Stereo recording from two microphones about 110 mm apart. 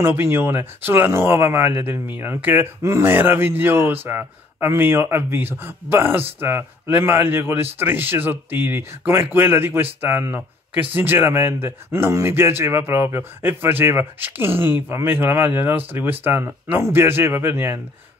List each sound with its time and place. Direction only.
0.0 s speech: 20° right (ahead or behind)